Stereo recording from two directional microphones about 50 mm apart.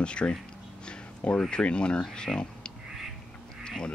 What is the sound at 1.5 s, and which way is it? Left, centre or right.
Speech, centre.